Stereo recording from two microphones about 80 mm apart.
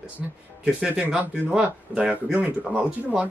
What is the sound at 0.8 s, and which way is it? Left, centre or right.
Speech, centre.